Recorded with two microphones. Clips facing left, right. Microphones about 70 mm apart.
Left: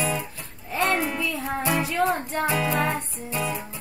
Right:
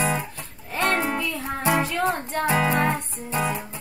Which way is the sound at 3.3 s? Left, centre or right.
Right.